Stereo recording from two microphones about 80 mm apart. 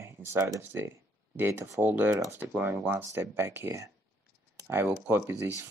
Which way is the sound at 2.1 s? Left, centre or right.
Right.